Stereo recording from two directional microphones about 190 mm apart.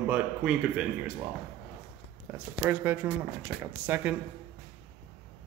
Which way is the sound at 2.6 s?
20° right (ahead or behind).